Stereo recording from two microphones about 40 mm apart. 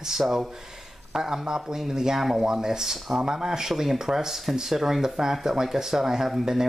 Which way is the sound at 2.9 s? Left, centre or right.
Centre.